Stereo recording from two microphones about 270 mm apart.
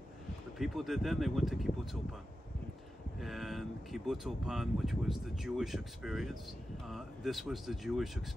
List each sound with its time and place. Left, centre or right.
0.6 s speech: centre
3.2 s speech: centre